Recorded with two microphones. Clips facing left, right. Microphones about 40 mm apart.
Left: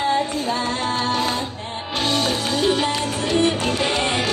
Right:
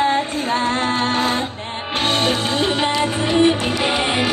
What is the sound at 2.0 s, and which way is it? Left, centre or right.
Music, right.